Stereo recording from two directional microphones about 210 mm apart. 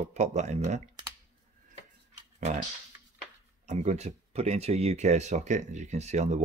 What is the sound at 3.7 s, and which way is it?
Speech, 30° right (ahead or behind).